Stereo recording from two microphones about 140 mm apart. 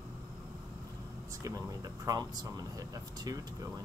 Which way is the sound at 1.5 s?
25° right (ahead or behind).